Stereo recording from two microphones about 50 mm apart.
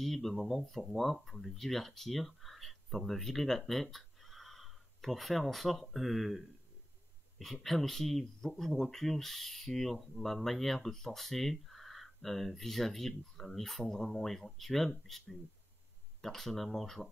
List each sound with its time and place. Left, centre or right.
0.0 s speech: centre
7.6 s speech: centre